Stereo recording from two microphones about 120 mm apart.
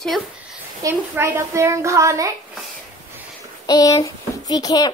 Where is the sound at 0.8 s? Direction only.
20° right (ahead or behind).